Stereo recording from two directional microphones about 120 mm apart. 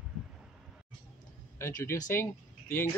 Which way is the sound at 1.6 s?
25° left (ahead or behind).